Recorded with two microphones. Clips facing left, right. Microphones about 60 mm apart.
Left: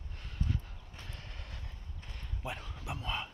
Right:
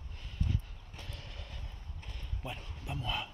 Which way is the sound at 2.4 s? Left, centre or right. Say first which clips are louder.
Left 2 dB; left.